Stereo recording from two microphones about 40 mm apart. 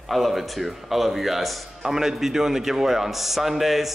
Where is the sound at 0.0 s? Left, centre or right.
Centre.